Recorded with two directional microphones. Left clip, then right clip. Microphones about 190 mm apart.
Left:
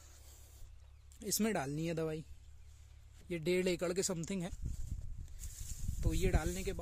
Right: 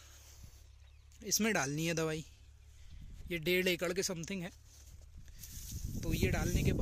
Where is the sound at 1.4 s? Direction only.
5° right (ahead or behind).